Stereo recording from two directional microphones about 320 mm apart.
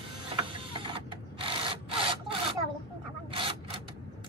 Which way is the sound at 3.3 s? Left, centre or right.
Centre.